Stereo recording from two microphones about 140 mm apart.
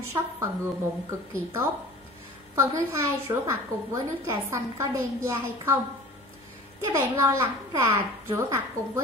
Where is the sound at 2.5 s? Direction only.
20° right (ahead or behind).